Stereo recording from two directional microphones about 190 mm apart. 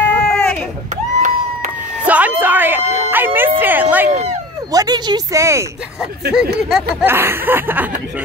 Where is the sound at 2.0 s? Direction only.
10° right (ahead or behind).